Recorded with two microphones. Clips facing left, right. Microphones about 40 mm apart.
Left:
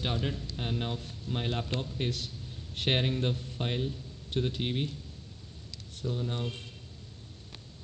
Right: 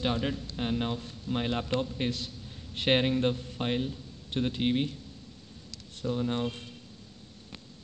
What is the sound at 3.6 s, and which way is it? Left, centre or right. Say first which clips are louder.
Speech: right 3 dB; centre.